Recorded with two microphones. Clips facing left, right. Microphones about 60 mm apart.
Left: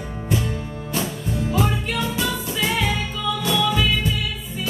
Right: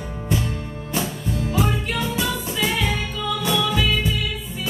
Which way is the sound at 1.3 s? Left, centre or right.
Centre.